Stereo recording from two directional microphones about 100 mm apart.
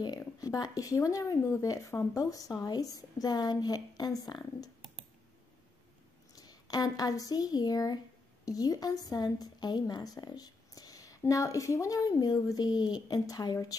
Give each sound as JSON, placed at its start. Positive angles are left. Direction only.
{"t": 0.4, "sound": "a woman's voice", "side_deg": 35}
{"t": 6.3, "sound": "a woman's voice", "side_deg": 40}